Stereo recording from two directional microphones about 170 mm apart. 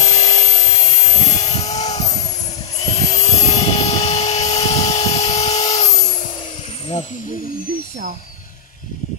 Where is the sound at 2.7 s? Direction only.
35° left (ahead or behind).